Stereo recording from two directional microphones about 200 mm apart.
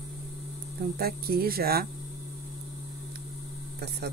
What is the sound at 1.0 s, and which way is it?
Speech, 50° right (ahead or behind).